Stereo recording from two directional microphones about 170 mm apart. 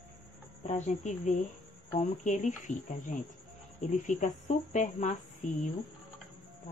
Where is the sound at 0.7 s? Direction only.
45° left (ahead or behind).